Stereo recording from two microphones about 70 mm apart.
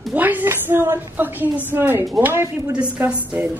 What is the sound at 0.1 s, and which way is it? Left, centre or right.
A woman's voice, right.